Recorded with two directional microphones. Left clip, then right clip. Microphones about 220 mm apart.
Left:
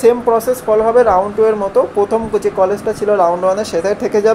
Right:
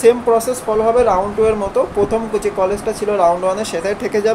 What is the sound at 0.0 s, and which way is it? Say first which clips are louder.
Speech: left 1 dB; 10° left (ahead or behind).